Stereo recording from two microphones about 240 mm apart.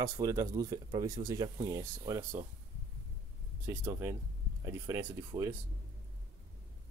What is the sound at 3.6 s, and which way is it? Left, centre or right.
Speech, centre.